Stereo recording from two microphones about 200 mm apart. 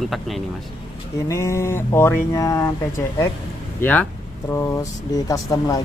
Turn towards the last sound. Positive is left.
turn(degrees=15)  # may be behind; listen again after turning